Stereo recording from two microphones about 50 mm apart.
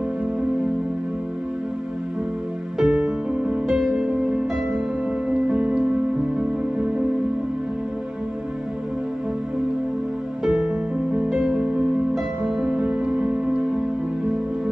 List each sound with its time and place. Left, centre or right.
2.8 s music: centre
11.2 s music: centre; by 13.7 s right